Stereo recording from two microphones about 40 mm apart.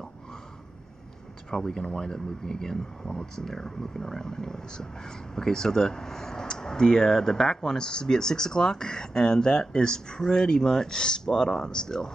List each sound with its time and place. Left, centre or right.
1.5 s speech: centre